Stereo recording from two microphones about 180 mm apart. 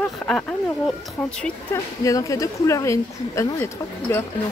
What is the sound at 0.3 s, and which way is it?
Speech, 10° left (ahead or behind).